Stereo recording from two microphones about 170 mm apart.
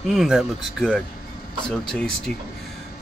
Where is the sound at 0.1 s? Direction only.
Centre (ahead or behind).